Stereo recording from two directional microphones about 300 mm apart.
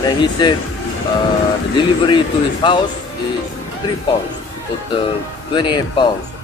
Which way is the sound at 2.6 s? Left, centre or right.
Centre.